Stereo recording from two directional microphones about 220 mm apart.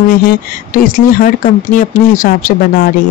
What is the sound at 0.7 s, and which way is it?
Speech, 40° left (ahead or behind).